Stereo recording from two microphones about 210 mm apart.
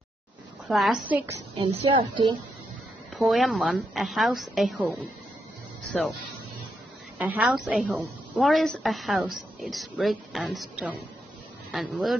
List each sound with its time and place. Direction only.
0.7 s a woman's voice: centre (ahead or behind)
1.5 s a woman's voice: 25° right (ahead or behind)
3.2 s a woman's voice: centre (ahead or behind)
7.2 s a woman's voice: 5° right (ahead or behind)